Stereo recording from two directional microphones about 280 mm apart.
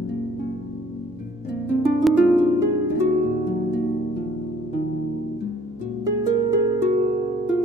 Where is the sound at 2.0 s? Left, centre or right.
Centre.